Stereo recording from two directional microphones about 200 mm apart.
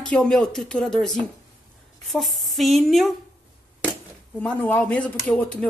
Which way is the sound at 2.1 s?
Centre (ahead or behind).